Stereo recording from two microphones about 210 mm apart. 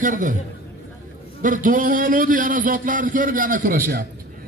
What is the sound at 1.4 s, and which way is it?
A man's voice, 40° right (ahead or behind).